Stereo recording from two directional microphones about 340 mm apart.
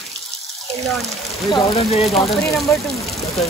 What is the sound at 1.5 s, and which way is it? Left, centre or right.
Speech, centre.